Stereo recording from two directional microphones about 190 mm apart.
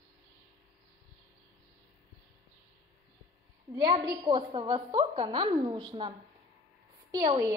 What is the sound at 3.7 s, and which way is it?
A woman's voice, 25° right (ahead or behind).